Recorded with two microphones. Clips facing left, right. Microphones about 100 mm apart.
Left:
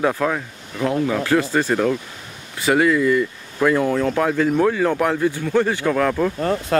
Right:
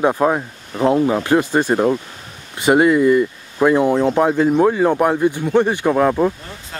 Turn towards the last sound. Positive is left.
turn(degrees=80)